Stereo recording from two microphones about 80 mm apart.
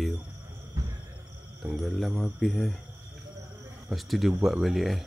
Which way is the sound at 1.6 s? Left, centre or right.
Centre.